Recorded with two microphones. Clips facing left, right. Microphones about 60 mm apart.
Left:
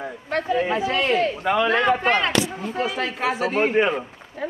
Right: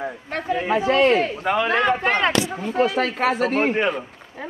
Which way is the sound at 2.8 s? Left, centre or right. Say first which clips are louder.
Right 5 dB; right.